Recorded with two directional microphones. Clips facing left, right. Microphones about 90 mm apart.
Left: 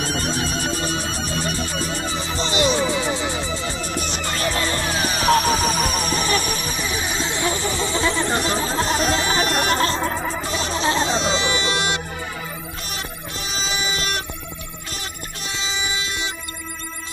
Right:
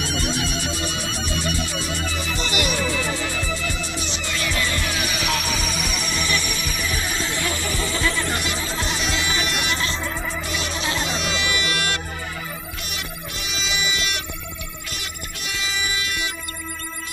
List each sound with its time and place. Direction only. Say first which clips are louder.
0.0 s music: left 1 dB; 40° left (ahead or behind)
3.8 s music: left 3 dB; 45° left (ahead or behind); by 12.0 s 25° left (ahead or behind)
12.9 s music: left 2 dB; 35° left (ahead or behind)
15.4 s music: even; 25° left (ahead or behind)